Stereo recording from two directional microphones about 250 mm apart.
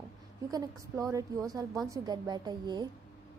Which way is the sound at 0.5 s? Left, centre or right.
Centre.